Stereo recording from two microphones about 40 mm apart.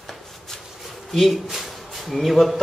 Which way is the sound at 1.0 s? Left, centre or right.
Centre.